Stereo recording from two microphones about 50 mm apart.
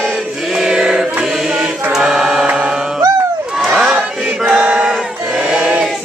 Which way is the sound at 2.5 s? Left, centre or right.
Centre.